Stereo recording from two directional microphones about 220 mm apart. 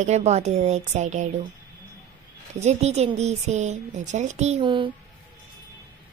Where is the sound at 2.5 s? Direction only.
30° right (ahead or behind).